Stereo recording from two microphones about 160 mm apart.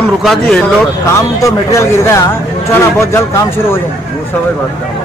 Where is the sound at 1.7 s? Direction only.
20° left (ahead or behind).